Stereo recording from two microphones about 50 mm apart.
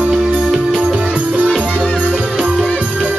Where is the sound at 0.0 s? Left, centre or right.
Centre.